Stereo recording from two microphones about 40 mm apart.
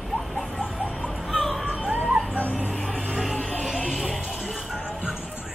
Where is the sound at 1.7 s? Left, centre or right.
Right.